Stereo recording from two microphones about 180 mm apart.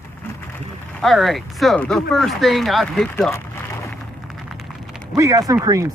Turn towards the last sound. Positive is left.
turn(degrees=-20)  # may be behind; listen again after turning